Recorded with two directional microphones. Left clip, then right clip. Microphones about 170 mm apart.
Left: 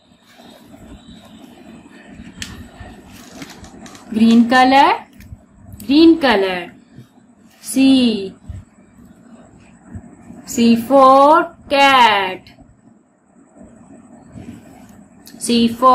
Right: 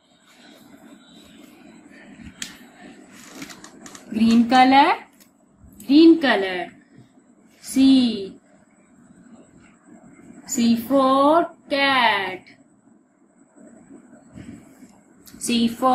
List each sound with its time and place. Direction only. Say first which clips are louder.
4.1 s speech: left 5 dB; 5° left (ahead or behind)
5.9 s speech: left 3 dB; 25° left (ahead or behind)
7.7 s a woman's voice: left 4 dB; 30° left (ahead or behind)
10.4 s speech: left 7 dB; 30° left (ahead or behind)
15.3 s a woman's voice: left 6 dB; 5° left (ahead or behind)